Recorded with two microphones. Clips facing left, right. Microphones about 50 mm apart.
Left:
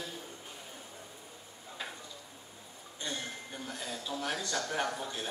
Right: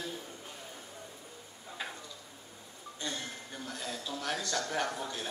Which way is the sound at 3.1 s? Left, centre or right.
Centre.